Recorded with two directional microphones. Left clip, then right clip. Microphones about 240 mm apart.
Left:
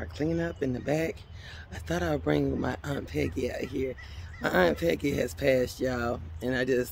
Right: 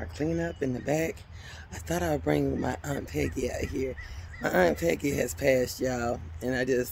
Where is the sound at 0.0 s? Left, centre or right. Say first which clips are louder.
Even; centre.